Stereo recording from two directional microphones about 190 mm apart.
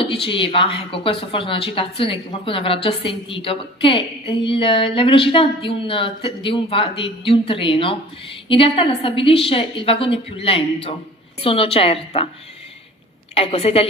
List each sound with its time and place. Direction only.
0.0 s a woman's voice: 30° left (ahead or behind)
13.4 s a woman's voice: 30° left (ahead or behind)